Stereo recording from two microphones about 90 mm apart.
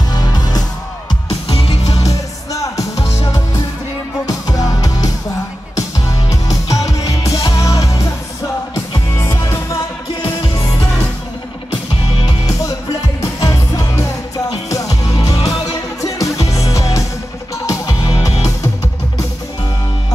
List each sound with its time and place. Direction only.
0.1 s music: 50° left (ahead or behind)
2.0 s music: 40° left (ahead or behind)
12.3 s music: 40° left (ahead or behind)